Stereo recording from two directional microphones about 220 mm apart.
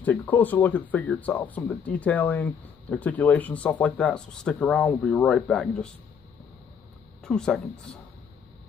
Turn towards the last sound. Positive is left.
turn(degrees=5)  # may be behind; listen again after turning